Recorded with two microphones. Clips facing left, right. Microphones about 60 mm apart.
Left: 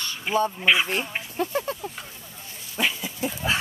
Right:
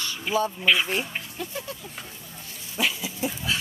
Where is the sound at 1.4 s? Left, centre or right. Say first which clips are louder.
Left 11 dB; left.